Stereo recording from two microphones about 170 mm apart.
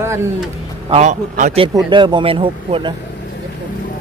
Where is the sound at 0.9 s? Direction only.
45° right (ahead or behind).